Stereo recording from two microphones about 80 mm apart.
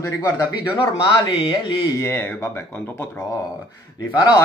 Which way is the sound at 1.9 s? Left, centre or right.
Left.